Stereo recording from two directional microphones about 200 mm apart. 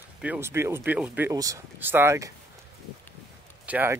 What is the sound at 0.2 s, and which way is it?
Speech, 10° right (ahead or behind).